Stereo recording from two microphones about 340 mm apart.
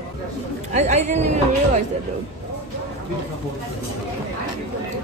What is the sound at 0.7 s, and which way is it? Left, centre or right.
Speech, centre.